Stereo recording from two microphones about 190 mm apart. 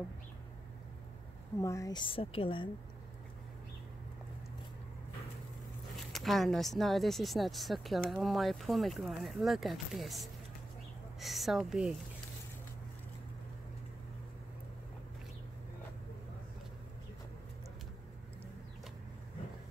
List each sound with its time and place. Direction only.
1.6 s a woman's voice: 15° left (ahead or behind)
5.9 s a woman's voice: centre (ahead or behind)